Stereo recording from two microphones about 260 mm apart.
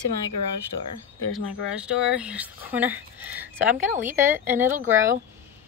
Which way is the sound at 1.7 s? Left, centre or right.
Centre.